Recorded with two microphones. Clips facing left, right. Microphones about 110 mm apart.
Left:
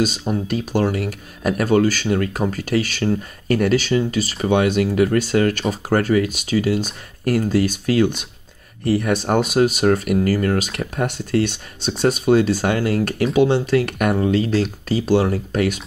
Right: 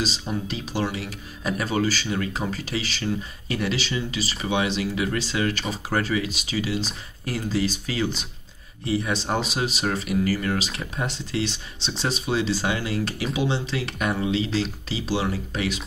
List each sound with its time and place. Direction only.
0.3 s speech: 50° left (ahead or behind)